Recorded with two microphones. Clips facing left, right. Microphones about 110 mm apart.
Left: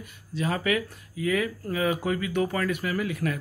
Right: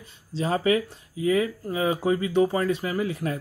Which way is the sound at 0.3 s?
30° right (ahead or behind).